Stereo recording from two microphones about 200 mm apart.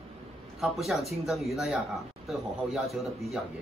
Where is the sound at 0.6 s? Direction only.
Centre (ahead or behind).